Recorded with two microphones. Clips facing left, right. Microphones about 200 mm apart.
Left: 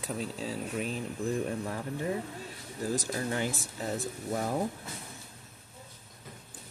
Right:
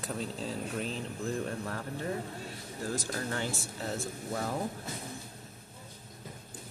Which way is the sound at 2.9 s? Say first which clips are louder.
Left 3 dB; 15° left (ahead or behind).